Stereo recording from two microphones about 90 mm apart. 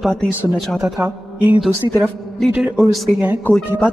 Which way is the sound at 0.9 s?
15° right (ahead or behind).